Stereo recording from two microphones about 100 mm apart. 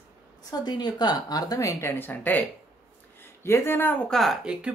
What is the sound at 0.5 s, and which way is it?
Speech, 45° left (ahead or behind).